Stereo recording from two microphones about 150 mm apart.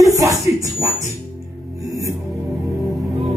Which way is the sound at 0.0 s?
20° right (ahead or behind).